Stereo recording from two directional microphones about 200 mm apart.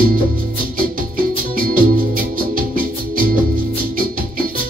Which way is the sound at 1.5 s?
45° right (ahead or behind).